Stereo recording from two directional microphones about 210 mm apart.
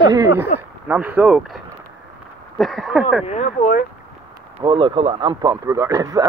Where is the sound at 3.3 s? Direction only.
40° left (ahead or behind).